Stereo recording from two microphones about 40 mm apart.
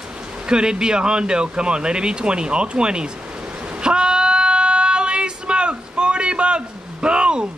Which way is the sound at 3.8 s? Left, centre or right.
Right.